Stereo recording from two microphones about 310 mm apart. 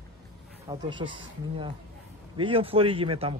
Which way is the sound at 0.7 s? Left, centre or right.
Centre.